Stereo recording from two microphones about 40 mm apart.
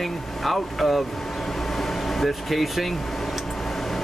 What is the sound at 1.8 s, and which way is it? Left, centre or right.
Air conditioning, centre.